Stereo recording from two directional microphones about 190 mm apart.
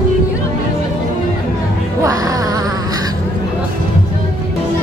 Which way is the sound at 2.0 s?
20° right (ahead or behind).